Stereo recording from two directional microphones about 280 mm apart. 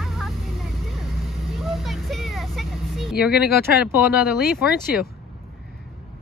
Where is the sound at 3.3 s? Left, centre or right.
Left.